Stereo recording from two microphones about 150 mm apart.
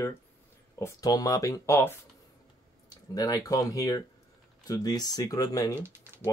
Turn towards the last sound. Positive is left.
turn(degrees=-15)  # may be behind; listen again after turning